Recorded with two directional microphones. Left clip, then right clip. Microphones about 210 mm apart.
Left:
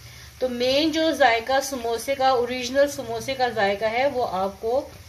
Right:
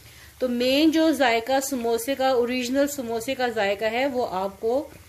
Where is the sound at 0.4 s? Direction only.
35° right (ahead or behind).